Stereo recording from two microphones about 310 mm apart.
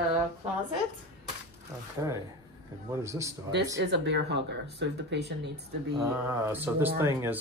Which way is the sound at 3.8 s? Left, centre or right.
Right.